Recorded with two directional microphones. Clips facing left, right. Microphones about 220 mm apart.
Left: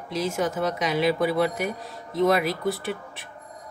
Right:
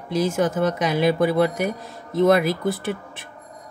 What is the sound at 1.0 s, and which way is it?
Speech, 50° right (ahead or behind).